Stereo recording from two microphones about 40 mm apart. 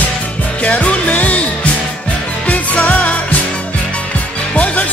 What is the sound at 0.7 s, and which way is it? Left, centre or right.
Music, left.